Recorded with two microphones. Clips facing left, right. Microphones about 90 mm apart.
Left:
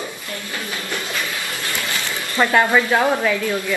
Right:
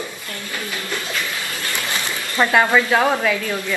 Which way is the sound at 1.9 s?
20° right (ahead or behind).